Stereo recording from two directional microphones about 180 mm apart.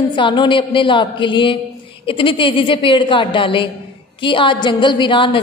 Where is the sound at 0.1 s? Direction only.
25° left (ahead or behind).